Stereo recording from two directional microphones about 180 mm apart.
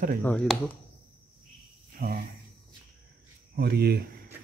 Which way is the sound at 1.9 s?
55° right (ahead or behind).